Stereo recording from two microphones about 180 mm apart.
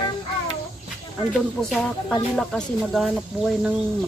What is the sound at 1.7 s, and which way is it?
Speech, 5° left (ahead or behind).